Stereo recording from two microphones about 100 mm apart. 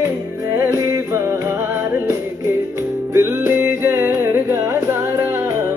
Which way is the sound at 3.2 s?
20° right (ahead or behind).